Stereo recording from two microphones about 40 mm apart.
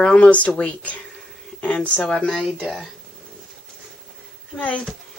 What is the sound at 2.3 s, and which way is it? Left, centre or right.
Speech, centre.